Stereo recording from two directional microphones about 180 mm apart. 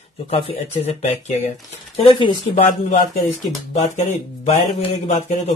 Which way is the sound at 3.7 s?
35° left (ahead or behind).